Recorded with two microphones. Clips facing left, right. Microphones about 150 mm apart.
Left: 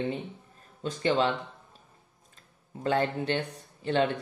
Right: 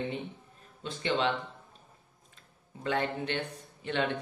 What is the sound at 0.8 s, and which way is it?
Speech, 40° left (ahead or behind).